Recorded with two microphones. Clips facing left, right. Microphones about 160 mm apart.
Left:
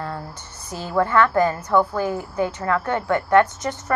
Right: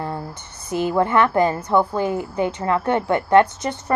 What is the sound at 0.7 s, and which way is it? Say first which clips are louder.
A woman's voice: right 3 dB; 20° right (ahead or behind).